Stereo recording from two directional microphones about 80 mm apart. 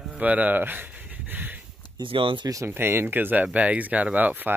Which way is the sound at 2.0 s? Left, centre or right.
Right.